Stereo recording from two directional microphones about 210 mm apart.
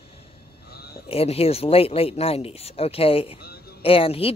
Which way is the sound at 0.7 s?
50° left (ahead or behind).